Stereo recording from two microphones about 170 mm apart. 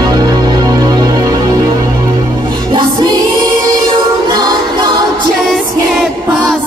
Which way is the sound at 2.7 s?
25° right (ahead or behind).